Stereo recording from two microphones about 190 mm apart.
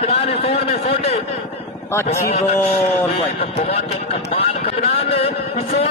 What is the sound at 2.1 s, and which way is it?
A man's voice, 35° left (ahead or behind).